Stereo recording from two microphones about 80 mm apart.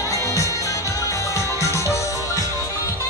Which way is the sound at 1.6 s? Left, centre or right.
Left.